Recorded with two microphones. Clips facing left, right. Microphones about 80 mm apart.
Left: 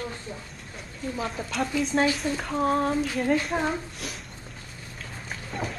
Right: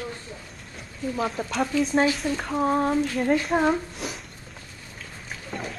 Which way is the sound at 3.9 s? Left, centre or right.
Centre.